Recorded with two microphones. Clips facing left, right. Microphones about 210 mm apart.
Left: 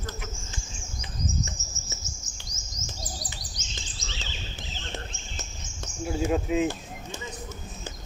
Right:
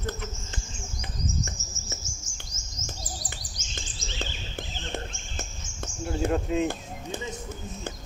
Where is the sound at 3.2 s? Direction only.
50° right (ahead or behind).